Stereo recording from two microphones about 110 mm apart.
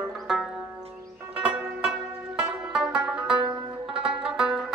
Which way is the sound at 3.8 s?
55° right (ahead or behind).